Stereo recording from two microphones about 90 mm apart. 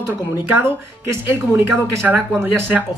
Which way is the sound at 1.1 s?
25° right (ahead or behind).